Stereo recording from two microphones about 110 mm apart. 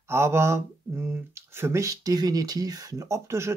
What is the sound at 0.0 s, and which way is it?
Speech, 25° right (ahead or behind).